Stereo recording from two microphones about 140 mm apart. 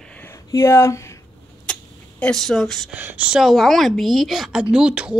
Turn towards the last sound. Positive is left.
turn(degrees=-5)  # may be behind; listen again after turning